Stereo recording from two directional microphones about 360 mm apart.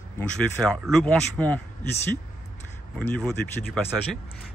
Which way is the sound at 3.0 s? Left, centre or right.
Centre.